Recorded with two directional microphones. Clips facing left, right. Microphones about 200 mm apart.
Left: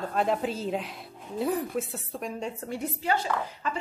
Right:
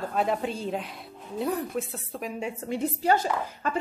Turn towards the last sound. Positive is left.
turn(degrees=-45)  # may be behind; listen again after turning